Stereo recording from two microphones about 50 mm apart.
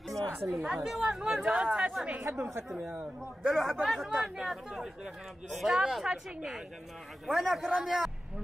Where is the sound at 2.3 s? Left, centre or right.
Right.